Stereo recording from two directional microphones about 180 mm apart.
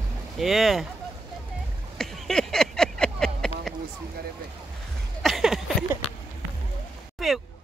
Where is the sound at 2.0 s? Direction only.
Centre (ahead or behind).